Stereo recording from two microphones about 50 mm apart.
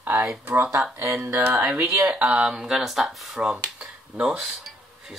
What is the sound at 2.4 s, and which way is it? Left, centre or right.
Speech, centre.